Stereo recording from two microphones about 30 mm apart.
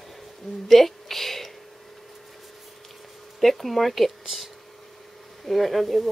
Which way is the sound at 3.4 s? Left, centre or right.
Centre.